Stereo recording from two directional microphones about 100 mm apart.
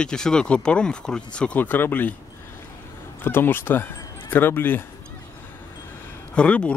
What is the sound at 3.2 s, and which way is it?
Speech, 20° left (ahead or behind).